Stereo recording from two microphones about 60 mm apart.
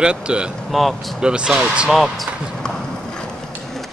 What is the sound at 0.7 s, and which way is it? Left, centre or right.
Speech, centre.